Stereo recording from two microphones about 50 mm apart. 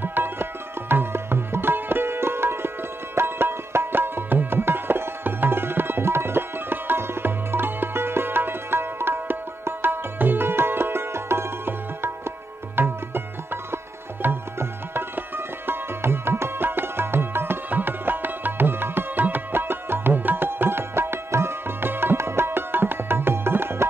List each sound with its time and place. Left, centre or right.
0.0 s tabla: right
3.2 s music: right
12.7 s tabla: right
14.2 s music: right